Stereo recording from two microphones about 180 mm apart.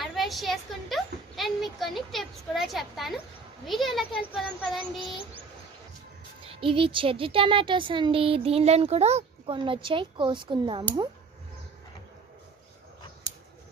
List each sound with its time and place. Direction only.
0.0 s a child's voice: centre (ahead or behind)
6.4 s speech: 30° right (ahead or behind)